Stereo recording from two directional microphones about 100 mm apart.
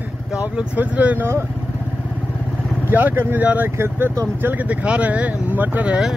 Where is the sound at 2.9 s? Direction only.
20° right (ahead or behind).